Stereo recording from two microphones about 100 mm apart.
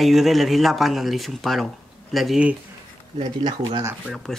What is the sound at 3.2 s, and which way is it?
Speech, 50° right (ahead or behind).